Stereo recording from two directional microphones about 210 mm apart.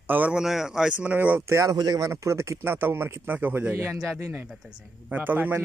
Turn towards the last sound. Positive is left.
turn(degrees=-10)  # may be behind; listen again after turning